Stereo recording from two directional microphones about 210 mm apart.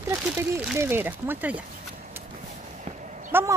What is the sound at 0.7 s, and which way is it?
Speech, 10° right (ahead or behind).